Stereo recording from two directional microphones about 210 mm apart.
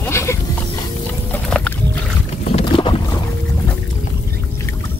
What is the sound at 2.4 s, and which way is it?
Boat, 25° left (ahead or behind).